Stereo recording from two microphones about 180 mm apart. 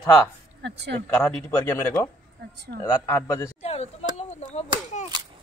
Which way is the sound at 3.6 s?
35° left (ahead or behind).